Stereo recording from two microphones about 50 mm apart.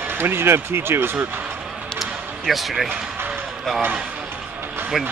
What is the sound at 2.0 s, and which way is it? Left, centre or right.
Basketball bounce, centre.